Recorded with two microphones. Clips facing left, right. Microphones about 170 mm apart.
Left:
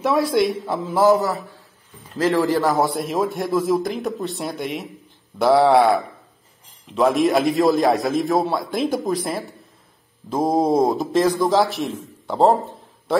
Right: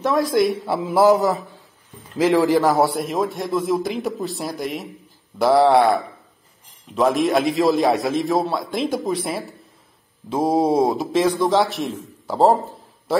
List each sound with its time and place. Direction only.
0.0 s a man's voice: 5° left (ahead or behind)
0.7 s a man's voice: 15° right (ahead or behind)
3.0 s a man's voice: centre (ahead or behind)